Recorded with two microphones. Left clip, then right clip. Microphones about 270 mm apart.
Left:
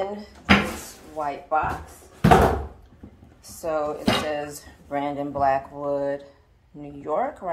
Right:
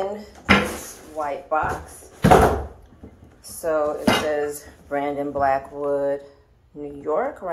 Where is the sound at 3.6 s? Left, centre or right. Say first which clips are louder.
Right 4 dB; left.